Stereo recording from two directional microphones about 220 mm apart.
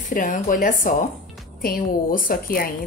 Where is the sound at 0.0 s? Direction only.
35° left (ahead or behind).